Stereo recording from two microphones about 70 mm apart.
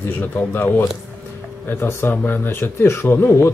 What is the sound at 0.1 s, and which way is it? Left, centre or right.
Speech, left.